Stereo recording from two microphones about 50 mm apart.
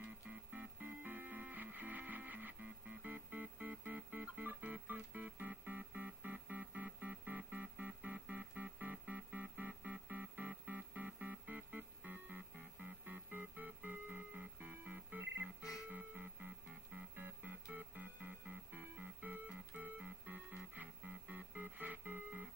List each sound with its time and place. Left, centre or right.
0.0 s music: right
21.5 s music: right